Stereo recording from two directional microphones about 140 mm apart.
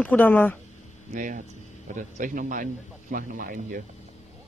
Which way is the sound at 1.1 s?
70° right (ahead or behind).